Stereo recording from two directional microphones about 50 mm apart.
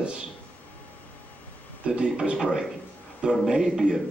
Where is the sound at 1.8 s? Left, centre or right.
Centre.